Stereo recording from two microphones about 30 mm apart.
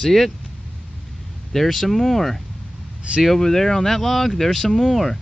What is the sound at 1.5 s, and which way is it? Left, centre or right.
Speech, centre.